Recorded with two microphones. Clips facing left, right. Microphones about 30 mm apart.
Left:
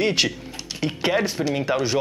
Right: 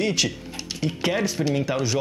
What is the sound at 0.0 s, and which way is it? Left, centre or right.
Speech, left.